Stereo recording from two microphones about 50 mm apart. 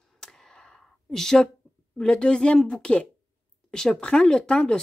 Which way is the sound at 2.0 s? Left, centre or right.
Centre.